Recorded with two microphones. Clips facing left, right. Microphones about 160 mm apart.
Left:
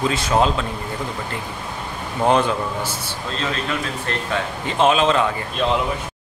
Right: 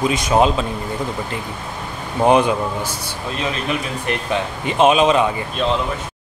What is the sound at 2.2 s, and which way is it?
A man's voice, 15° right (ahead or behind).